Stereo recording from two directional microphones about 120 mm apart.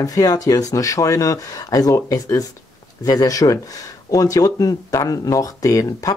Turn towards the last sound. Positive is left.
turn(degrees=30)  # may be behind; listen again after turning